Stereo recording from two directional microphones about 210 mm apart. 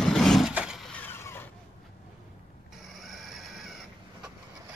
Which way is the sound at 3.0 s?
Centre (ahead or behind).